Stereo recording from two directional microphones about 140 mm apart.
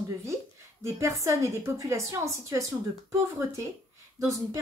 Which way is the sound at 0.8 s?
20° right (ahead or behind).